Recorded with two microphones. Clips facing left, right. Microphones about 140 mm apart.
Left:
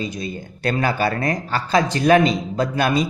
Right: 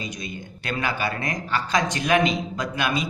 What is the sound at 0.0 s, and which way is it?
Speech, 30° left (ahead or behind).